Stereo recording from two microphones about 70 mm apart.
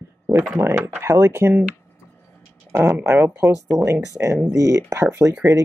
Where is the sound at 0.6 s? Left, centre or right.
Right.